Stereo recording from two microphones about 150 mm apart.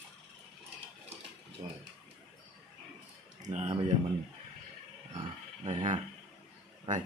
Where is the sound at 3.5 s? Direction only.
50° right (ahead or behind).